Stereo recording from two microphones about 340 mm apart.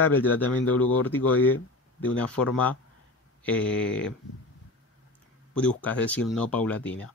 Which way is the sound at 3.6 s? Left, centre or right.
Left.